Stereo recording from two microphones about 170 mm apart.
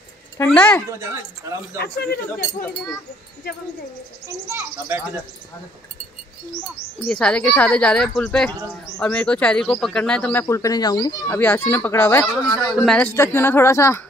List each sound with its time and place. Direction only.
0.5 s speech: 5° left (ahead or behind)
0.8 s speech: 15° right (ahead or behind)
1.8 s speech: 70° left (ahead or behind)
4.5 s speech: 10° right (ahead or behind)
7.1 s speech: 5° left (ahead or behind)
10.4 s speech: 20° left (ahead or behind)
11.3 s speech: 10° left (ahead or behind)
12.8 s speech: 5° left (ahead or behind)